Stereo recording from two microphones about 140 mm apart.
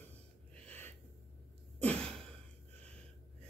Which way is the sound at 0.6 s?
15° left (ahead or behind).